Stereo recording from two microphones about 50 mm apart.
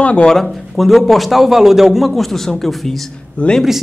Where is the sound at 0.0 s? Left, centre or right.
Left.